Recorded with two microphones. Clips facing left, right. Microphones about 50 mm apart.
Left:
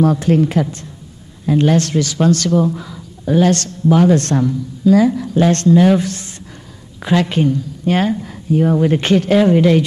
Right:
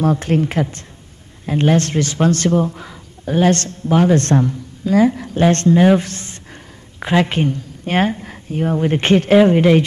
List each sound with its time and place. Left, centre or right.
0.0 s a woman's voice: right